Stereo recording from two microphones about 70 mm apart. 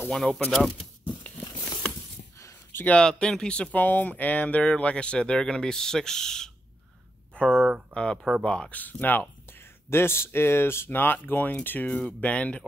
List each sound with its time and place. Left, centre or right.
0.1 s speech: centre
1.9 s a sound: left
2.7 s speech: left
3.7 s speech: left
8.2 s speech: centre
8.5 s speech: centre